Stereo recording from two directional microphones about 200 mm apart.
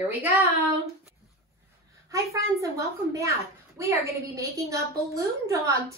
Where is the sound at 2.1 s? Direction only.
15° right (ahead or behind).